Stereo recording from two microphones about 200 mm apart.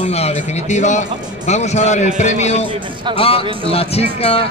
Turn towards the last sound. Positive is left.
turn(degrees=30)  # may be behind; listen again after turning